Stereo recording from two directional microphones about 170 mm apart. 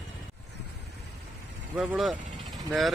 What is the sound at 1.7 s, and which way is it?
Speech, centre (ahead or behind).